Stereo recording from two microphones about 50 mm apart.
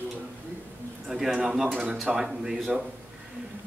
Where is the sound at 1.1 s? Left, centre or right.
Centre.